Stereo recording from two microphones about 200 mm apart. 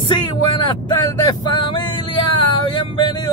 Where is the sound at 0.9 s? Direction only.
20° left (ahead or behind).